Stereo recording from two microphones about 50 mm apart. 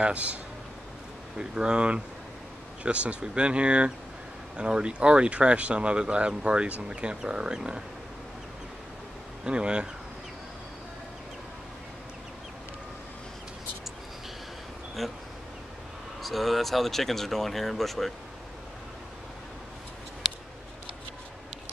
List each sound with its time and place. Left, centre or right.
0.0 s speech: right
1.4 s speech: centre
9.4 s speech: centre
15.0 s speech: centre
16.2 s speech: centre